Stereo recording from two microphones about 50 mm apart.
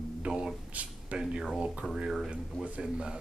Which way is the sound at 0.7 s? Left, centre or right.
Right.